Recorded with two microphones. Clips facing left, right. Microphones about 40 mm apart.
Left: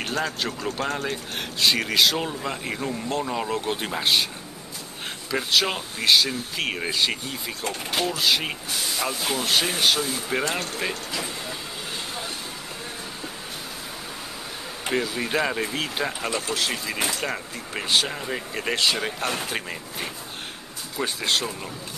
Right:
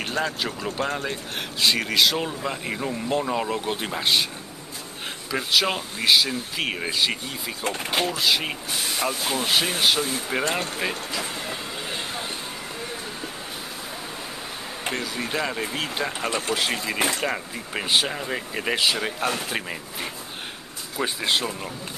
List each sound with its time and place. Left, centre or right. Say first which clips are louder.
0.0 s speech: right 1 dB; centre
1.1 s speech: even; centre
5.3 s speech: even; centre
7.6 s speech: right 2 dB; right
8.1 s speech: even; centre
14.9 s speech: left 3 dB; centre
16.3 s speech: right 3 dB; right